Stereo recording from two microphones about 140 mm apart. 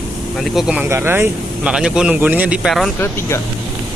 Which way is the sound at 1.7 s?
5° right (ahead or behind).